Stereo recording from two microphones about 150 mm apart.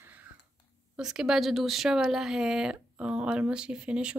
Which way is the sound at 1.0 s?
5° right (ahead or behind).